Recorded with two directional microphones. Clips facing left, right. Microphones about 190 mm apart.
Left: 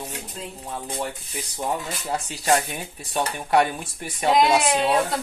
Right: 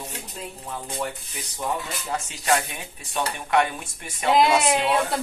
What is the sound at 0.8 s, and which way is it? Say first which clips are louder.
Speech: even; 35° left (ahead or behind).